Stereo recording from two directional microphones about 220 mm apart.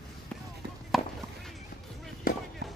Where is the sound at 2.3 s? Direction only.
40° left (ahead or behind).